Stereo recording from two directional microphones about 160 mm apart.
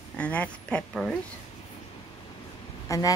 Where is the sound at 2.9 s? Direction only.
20° left (ahead or behind).